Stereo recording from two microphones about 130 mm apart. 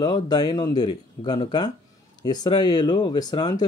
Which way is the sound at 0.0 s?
35° left (ahead or behind).